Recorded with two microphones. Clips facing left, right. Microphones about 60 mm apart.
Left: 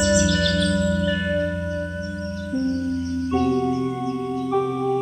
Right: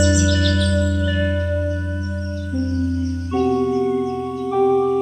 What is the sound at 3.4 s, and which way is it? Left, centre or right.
Music, centre.